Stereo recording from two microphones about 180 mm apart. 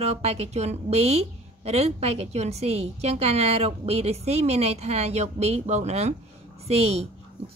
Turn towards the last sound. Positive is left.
turn(degrees=-35)  # may be behind; listen again after turning